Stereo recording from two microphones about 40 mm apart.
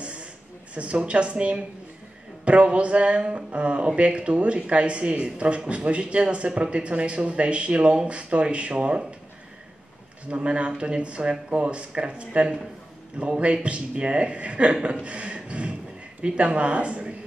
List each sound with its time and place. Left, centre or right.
0.0 s a sound: right
0.7 s speech: right
10.3 s speech: right